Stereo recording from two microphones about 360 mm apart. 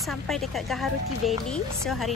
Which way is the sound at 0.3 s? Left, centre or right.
Centre.